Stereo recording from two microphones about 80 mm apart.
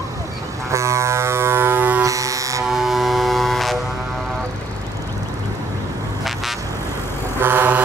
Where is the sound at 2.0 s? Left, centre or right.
Right.